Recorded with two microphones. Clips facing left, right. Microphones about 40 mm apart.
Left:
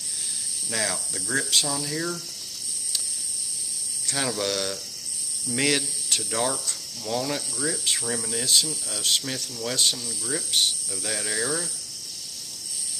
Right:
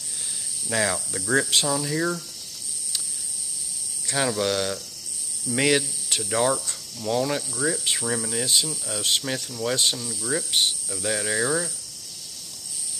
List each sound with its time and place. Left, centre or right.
0.7 s speech: centre
1.7 s speech: centre
4.2 s speech: centre